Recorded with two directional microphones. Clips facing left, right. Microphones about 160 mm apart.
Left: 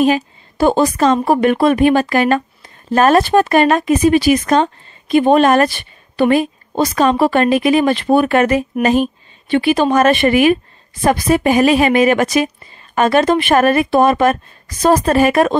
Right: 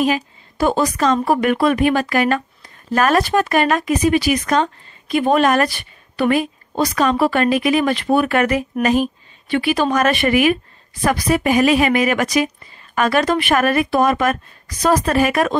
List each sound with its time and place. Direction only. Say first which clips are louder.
0.0 s a woman's voice: left 5 dB; 30° left (ahead or behind)